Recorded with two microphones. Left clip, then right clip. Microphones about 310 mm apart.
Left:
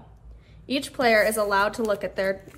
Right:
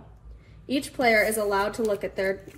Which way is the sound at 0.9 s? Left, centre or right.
Centre.